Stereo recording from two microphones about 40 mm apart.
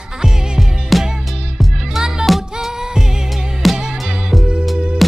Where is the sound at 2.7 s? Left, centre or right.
Centre.